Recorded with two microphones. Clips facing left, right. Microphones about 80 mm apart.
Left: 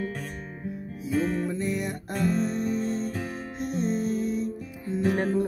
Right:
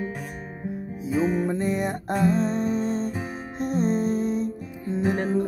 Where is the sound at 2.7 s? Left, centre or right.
Right.